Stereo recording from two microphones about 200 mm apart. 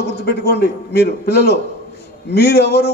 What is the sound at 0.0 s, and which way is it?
A man's voice, 55° left (ahead or behind).